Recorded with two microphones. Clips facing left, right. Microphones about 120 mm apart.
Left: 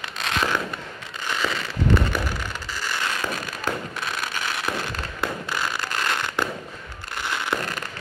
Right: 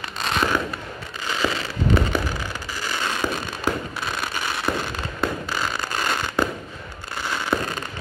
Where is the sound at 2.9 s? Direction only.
20° right (ahead or behind).